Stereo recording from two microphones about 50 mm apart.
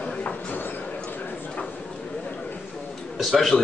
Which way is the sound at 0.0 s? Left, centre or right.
Left.